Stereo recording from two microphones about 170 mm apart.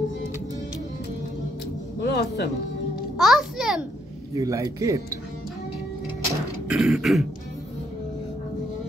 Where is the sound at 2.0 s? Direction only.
85° left.